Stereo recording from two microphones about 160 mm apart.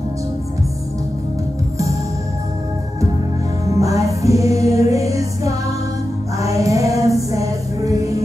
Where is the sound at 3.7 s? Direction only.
20° right (ahead or behind).